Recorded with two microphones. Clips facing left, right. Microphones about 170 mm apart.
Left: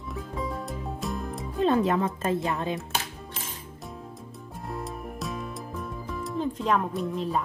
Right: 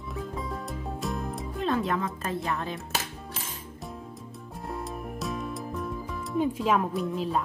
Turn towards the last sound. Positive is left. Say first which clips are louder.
# even
turn(degrees=0)  # may be behind; listen again after turning